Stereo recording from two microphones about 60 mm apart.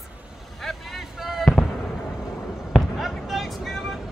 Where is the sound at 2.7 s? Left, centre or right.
Centre.